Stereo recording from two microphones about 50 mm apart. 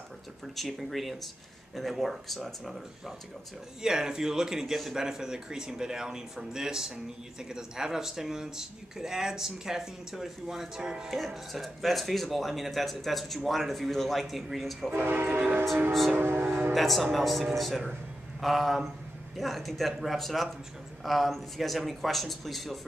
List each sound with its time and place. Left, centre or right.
0.6 s speech: centre
3.8 s speech: centre
11.1 s speech: centre
14.9 s train horn: right
15.9 s speech: centre